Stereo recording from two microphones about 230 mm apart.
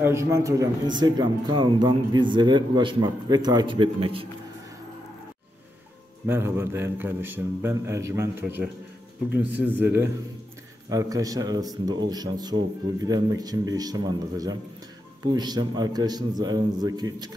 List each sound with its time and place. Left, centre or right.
0.0 s a man's voice: centre
6.2 s speech: centre